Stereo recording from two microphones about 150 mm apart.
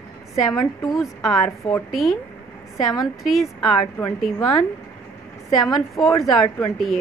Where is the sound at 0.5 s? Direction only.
20° left (ahead or behind).